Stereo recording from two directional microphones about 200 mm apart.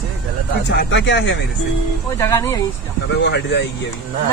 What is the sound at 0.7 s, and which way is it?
Speech, 60° left (ahead or behind).